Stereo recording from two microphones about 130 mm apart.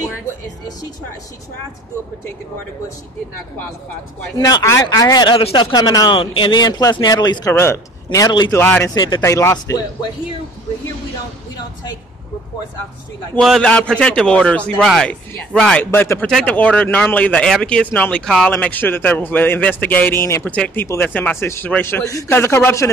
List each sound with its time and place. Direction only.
4.4 s speech: 30° left (ahead or behind)
8.5 s a man's voice: 15° left (ahead or behind)
8.9 s speech: 35° left (ahead or behind)
9.2 s speech: 20° left (ahead or behind)
13.4 s a man's voice: 5° left (ahead or behind)
15.9 s speech: 20° left (ahead or behind)
16.3 s a man's voice: centre (ahead or behind); by 22.8 s 20° left (ahead or behind)